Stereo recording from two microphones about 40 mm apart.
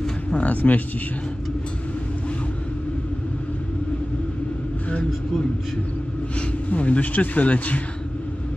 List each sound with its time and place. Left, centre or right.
0.3 s speech: left
6.7 s speech: left